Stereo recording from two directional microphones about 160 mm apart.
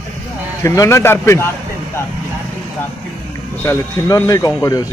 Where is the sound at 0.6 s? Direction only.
20° left (ahead or behind).